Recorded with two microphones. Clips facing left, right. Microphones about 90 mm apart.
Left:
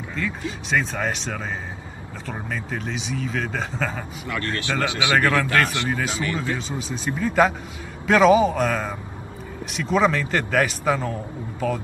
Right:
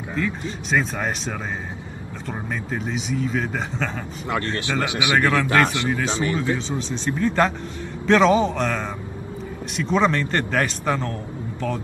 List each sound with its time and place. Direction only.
0.1 s speech: 5° right (ahead or behind)
4.3 s a man's voice: 25° right (ahead or behind)
6.8 s speech: 5° left (ahead or behind)